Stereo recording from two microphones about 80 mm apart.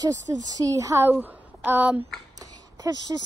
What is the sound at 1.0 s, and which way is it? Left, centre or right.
Speech, right.